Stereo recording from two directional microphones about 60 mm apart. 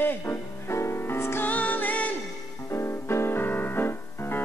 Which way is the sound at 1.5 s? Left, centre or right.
Left.